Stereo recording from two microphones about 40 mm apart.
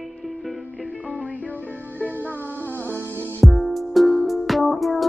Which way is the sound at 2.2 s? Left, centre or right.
Left.